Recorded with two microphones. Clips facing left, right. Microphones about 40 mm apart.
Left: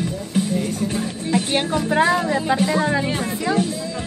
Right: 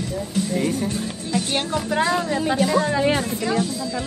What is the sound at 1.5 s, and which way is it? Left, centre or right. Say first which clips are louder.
Speech: left 3 dB; centre.